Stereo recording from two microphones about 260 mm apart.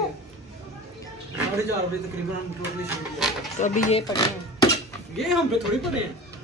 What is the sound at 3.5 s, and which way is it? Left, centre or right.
Speech, left.